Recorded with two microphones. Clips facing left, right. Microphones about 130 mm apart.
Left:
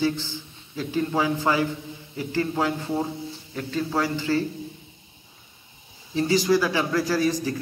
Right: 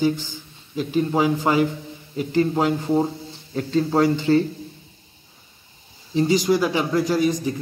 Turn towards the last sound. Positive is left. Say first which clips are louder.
# right 3 dB
turn(degrees=-20)  # may be behind; listen again after turning